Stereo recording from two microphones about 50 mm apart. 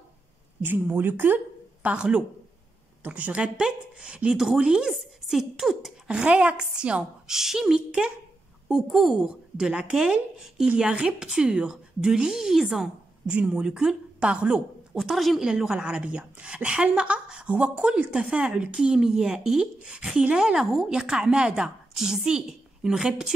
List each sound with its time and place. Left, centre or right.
0.7 s speech: right
2.0 s a woman's voice: centre
3.0 s a woman's voice: right
3.5 s a woman's voice: centre
4.9 s a woman's voice: centre
6.0 s a woman's voice: right
7.2 s a woman's voice: centre
13.3 s a woman's voice: right
15.0 s a woman's voice: centre
15.4 s a woman's voice: centre